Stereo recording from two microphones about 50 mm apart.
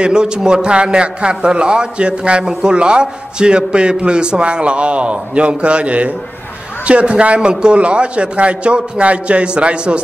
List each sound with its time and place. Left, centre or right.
0.0 s a man's voice: centre